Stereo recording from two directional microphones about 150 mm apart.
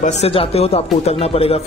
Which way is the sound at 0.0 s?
45° left (ahead or behind).